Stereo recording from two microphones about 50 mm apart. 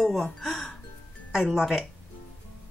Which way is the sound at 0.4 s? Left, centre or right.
Centre.